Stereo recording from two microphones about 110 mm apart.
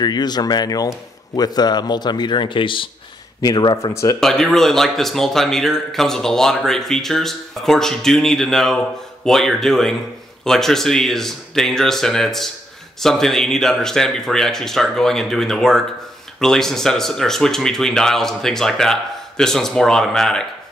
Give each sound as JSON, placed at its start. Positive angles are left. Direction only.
{"t": 0.0, "sound": "a man's voice", "side_deg": 40}
{"t": 3.7, "sound": "speech", "side_deg": 30}
{"t": 4.2, "sound": "speech", "side_deg": 5}